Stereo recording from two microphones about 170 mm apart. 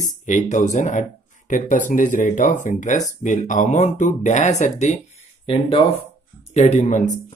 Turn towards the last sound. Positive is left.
turn(degrees=45)  # may be behind; listen again after turning